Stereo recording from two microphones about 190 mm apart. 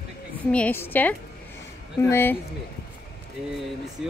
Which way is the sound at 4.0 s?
Centre (ahead or behind).